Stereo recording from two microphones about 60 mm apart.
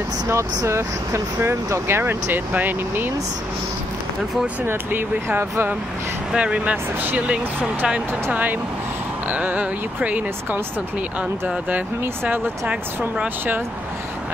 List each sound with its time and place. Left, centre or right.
0.7 s speech: right
2.5 s speech: right
4.6 s speech: right
6.3 s speech: centre